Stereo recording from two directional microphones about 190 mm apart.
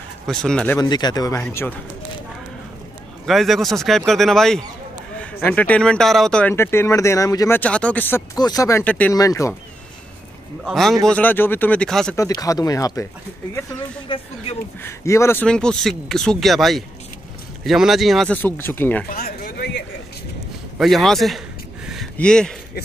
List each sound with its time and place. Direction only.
0.3 s speech: 5° left (ahead or behind)
0.7 s speech: 20° left (ahead or behind)
3.3 s speech: centre (ahead or behind)
9.1 s speech: 20° left (ahead or behind)
10.6 s speech: centre (ahead or behind)
12.2 s speech: 20° left (ahead or behind)
14.0 s speech: 25° left (ahead or behind)
14.8 s speech: 15° left (ahead or behind)
19.0 s a sound: 50° left (ahead or behind)
20.7 s speech: centre (ahead or behind)